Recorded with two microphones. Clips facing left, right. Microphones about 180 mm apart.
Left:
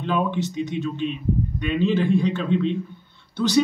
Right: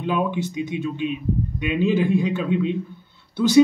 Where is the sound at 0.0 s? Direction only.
10° right (ahead or behind).